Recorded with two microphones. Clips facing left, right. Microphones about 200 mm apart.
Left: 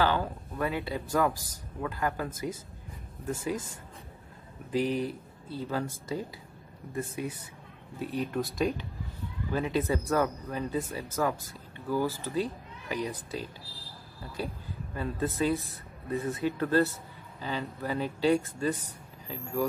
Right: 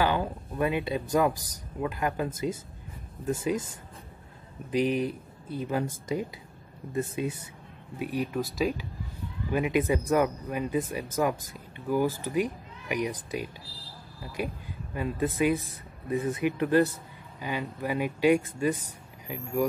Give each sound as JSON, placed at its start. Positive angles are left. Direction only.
{"t": 0.0, "sound": "speech", "side_deg": -15}
{"t": 4.6, "sound": "speech", "side_deg": -20}
{"t": 8.4, "sound": "speech", "side_deg": 0}
{"t": 9.5, "sound": "speech", "side_deg": -15}